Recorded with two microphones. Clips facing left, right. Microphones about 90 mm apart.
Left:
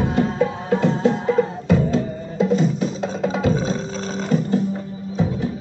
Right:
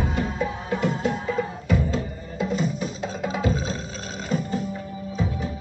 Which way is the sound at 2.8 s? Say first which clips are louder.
Left 6 dB; 40° left (ahead or behind).